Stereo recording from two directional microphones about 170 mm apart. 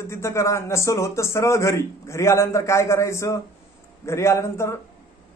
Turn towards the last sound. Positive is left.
turn(degrees=15)  # may be behind; listen again after turning